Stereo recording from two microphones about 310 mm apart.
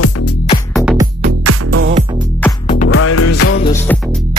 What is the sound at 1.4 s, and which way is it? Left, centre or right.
Music, right.